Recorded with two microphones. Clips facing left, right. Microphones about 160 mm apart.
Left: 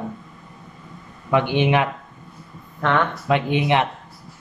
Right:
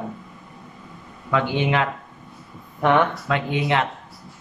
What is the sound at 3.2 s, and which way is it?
Speech, 20° left (ahead or behind).